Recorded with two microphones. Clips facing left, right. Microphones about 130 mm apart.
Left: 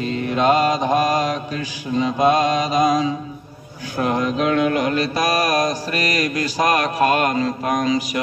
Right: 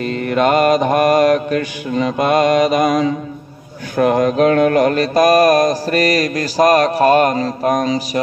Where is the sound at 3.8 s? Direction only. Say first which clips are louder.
Right 7 dB; 55° right (ahead or behind); by 8.2 s 35° right (ahead or behind).